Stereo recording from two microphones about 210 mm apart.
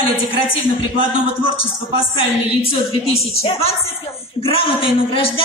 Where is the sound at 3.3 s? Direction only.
30° left (ahead or behind).